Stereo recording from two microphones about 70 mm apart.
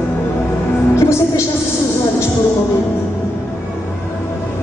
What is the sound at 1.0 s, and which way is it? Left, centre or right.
Music, left.